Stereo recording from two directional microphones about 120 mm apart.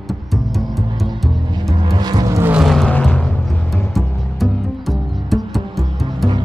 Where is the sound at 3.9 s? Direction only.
Centre (ahead or behind).